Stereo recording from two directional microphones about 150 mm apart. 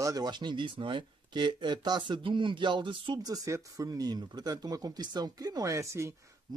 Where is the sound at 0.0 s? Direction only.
25° right (ahead or behind).